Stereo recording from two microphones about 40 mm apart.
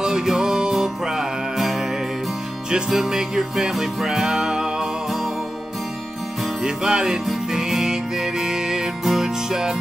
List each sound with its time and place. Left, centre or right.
0.0 s music: centre
6.4 s music: centre